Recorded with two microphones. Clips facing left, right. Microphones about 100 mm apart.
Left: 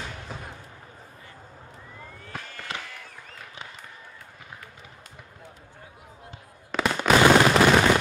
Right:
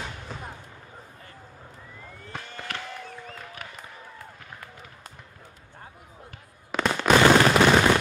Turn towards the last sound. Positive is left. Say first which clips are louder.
# even
turn(degrees=5)  # may be behind; listen again after turning